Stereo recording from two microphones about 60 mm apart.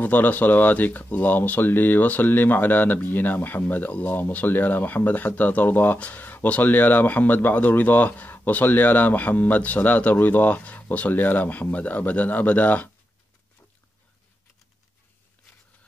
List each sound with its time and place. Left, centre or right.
0.0 s speech: left